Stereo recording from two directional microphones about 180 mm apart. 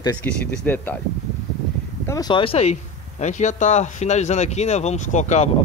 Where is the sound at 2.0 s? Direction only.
20° left (ahead or behind).